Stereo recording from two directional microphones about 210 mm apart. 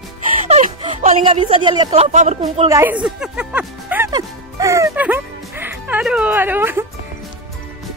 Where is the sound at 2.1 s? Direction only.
35° right (ahead or behind).